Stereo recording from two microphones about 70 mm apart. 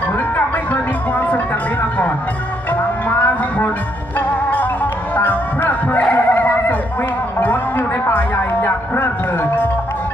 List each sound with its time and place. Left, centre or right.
1.1 s music: left
3.1 s music: left
5.1 s music: left